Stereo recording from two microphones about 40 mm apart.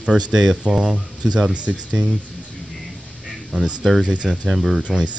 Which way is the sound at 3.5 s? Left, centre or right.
Right.